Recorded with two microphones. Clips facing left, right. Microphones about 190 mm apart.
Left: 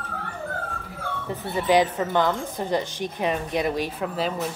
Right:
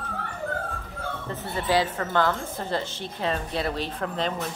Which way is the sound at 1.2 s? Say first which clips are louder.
Left 5 dB; 15° left (ahead or behind).